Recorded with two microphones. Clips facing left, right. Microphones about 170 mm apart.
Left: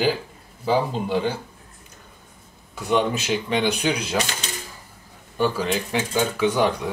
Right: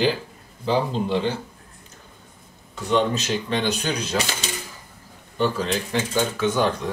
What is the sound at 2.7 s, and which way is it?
Speech, 10° left (ahead or behind).